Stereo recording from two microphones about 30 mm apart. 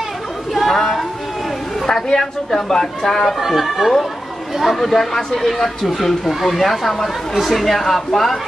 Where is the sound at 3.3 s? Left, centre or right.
Centre.